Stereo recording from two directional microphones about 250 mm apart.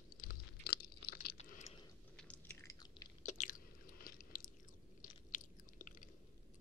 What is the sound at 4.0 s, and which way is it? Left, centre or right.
Biting, left.